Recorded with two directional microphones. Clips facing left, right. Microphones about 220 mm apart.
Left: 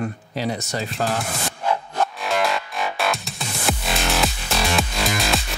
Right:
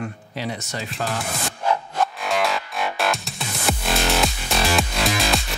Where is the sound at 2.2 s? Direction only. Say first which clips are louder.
Left 1 dB; centre (ahead or behind).